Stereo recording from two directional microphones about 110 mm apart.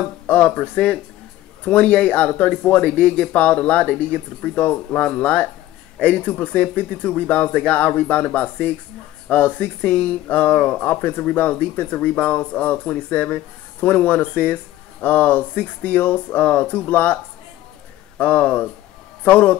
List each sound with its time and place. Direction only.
0.3 s speech: 15° left (ahead or behind)